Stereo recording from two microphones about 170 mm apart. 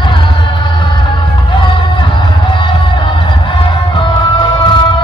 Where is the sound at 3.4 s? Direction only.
25° left (ahead or behind).